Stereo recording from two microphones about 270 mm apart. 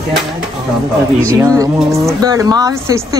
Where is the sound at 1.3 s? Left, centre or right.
Centre.